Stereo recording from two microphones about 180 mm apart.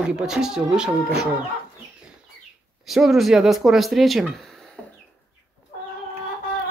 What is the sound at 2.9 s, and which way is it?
Speech, centre (ahead or behind).